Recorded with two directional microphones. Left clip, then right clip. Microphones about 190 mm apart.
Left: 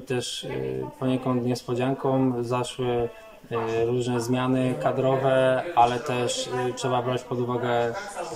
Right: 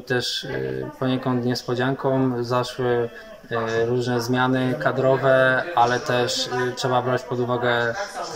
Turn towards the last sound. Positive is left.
turn(degrees=5)  # may be behind; listen again after turning